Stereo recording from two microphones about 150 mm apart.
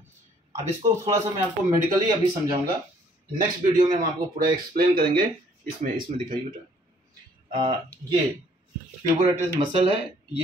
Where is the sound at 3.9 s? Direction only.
80° right.